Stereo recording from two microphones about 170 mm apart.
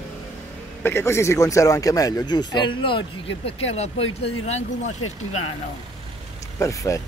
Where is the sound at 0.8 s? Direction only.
15° left (ahead or behind); by 5.4 s 40° left (ahead or behind).